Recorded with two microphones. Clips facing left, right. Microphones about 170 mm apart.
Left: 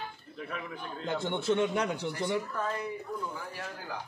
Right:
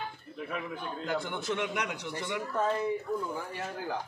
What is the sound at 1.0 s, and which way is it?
A man's voice, 25° left (ahead or behind).